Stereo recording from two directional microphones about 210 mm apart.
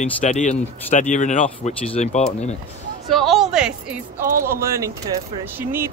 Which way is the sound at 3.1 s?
Centre (ahead or behind).